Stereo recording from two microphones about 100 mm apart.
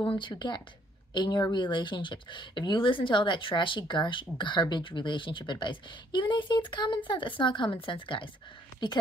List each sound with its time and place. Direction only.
0.0 s a woman's voice: 55° left (ahead or behind)